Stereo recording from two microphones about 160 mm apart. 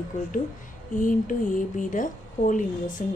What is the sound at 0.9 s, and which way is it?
Speech, 55° left (ahead or behind).